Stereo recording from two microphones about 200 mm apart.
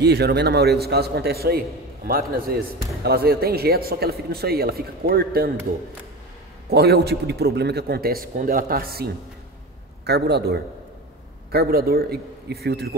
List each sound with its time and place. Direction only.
0.0 s speech: 55° right (ahead or behind)
6.7 s a man's voice: 55° right (ahead or behind)